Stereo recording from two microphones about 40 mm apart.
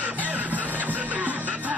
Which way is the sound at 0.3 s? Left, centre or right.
Right.